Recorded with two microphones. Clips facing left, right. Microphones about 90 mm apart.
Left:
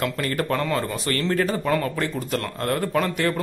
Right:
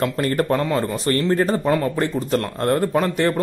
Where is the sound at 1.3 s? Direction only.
35° right (ahead or behind).